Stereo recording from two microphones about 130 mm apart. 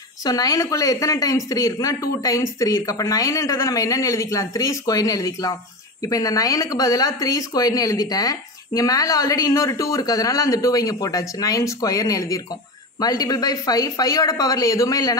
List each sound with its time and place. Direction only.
0.2 s speech: 30° left (ahead or behind)